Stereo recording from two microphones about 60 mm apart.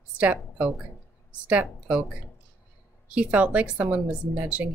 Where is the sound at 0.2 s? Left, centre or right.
Right.